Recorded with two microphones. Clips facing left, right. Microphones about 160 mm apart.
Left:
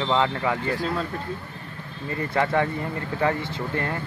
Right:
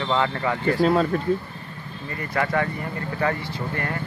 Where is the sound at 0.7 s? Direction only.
70° right (ahead or behind).